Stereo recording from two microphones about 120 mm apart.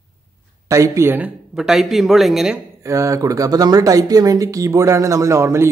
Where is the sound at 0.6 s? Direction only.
25° right (ahead or behind).